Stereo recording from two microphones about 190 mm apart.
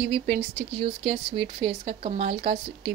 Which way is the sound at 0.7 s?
30° right (ahead or behind).